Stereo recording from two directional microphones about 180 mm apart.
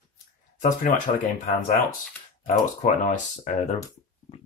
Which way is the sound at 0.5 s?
45° left (ahead or behind).